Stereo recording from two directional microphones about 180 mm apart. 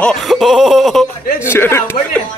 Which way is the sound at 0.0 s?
Centre (ahead or behind).